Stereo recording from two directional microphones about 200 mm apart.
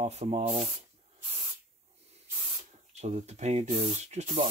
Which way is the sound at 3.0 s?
35° right (ahead or behind).